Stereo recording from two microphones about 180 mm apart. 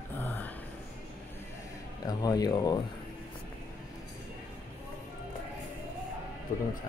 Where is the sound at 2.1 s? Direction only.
20° left (ahead or behind).